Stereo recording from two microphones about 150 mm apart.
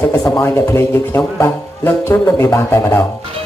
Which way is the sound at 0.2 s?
15° left (ahead or behind).